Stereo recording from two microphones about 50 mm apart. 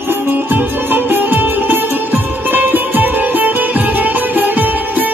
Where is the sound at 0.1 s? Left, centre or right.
Right.